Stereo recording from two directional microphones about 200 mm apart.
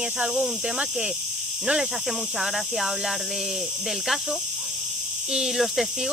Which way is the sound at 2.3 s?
Centre (ahead or behind).